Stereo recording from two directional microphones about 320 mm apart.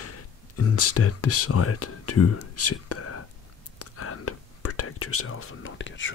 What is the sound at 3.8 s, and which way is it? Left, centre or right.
Whispering, left.